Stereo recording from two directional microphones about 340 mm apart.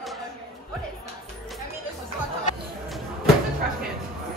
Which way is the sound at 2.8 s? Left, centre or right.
Centre.